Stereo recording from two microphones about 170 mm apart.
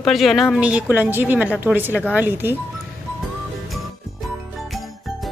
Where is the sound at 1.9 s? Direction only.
10° left (ahead or behind).